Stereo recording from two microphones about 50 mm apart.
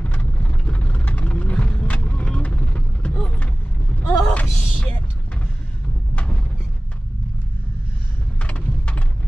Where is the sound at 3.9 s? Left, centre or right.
Left.